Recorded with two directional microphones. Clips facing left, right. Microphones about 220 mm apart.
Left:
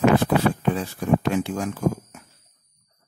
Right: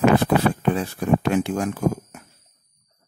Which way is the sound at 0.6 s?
60° right (ahead or behind).